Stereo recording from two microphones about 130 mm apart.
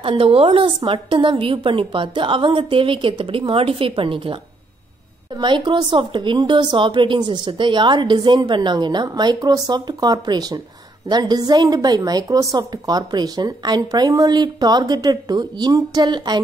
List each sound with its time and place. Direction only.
0.0 s a woman's voice: 45° right (ahead or behind)
5.4 s a woman's voice: 35° right (ahead or behind)